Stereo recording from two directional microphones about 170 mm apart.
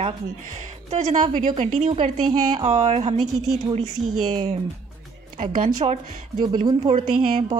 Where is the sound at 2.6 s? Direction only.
40° right (ahead or behind).